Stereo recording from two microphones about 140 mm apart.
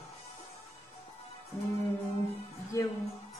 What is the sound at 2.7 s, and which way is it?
Speech, 20° left (ahead or behind).